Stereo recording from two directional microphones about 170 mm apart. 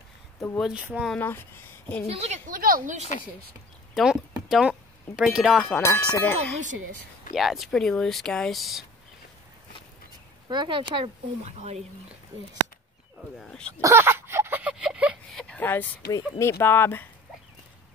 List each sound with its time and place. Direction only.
0.6 s speech: 5° right (ahead or behind)
1.1 s speech: 10° left (ahead or behind)
2.0 s speech: 40° right (ahead or behind)
2.4 s speech: 55° right (ahead or behind)
3.0 s speech: 40° left (ahead or behind)
3.9 s speech: 5° right (ahead or behind)
5.8 s speech: 10° left (ahead or behind)
7.3 s speech: centre (ahead or behind)
10.5 s speech: 30° right (ahead or behind)
11.4 s speech: 40° right (ahead or behind)
13.4 s speech: 5° left (ahead or behind)
13.7 s a sound: 15° right (ahead or behind)
15.3 s a sound: 5° left (ahead or behind)
16.1 s speech: 15° left (ahead or behind)